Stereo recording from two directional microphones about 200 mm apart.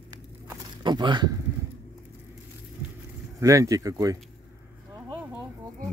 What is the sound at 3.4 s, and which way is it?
Speech, 15° right (ahead or behind).